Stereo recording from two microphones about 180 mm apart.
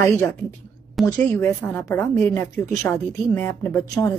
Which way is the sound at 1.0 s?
10° left (ahead or behind).